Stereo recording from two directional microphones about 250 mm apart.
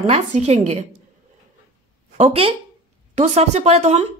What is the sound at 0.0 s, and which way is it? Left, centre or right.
Speech, right.